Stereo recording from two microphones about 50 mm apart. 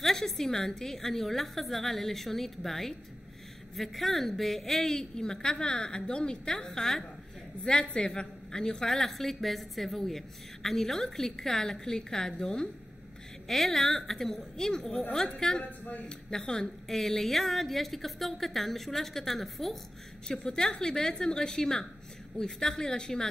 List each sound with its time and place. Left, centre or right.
0.0 s a woman's voice: centre
15.8 s a man's voice: left
16.1 s a woman's voice: centre
20.2 s a woman's voice: centre